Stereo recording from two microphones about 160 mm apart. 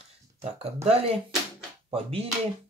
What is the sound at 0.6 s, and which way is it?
Speech, 40° right (ahead or behind).